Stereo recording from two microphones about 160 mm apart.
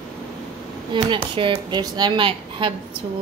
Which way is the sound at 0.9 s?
30° right (ahead or behind).